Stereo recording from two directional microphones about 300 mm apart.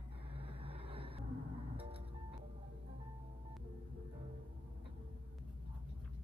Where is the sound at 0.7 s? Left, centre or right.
Centre.